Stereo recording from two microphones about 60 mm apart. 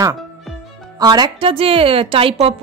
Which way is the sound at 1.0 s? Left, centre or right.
Right.